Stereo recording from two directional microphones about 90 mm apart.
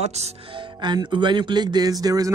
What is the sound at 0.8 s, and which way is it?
Speech, 60° right (ahead or behind).